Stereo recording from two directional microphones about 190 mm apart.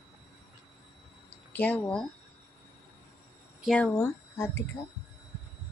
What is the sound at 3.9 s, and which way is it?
Speech, 15° left (ahead or behind).